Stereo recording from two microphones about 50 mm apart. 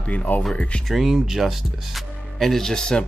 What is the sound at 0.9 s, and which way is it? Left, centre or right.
Speech, centre.